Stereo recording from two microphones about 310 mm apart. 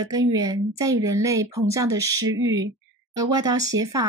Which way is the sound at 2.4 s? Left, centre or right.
Right.